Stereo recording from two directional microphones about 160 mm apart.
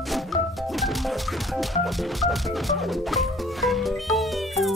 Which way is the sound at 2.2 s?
Centre (ahead or behind).